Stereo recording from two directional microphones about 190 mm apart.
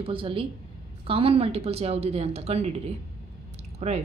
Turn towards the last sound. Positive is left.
turn(degrees=-35)  # may be behind; listen again after turning